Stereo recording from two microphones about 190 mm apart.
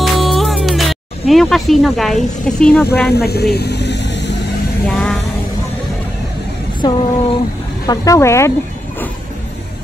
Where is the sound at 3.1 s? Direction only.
60° left (ahead or behind).